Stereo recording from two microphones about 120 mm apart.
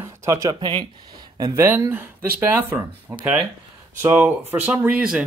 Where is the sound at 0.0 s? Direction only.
25° right (ahead or behind).